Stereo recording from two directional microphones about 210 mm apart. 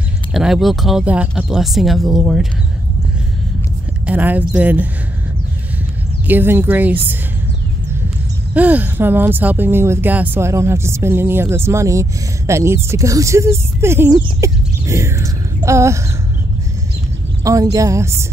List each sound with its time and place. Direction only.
0.3 s speech: centre (ahead or behind)
4.0 s speech: 10° right (ahead or behind)
6.2 s speech: 10° right (ahead or behind)
8.5 s speech: 10° right (ahead or behind)
17.4 s speech: 15° right (ahead or behind)